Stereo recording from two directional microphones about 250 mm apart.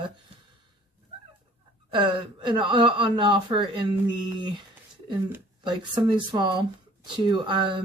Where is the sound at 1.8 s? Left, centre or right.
Centre.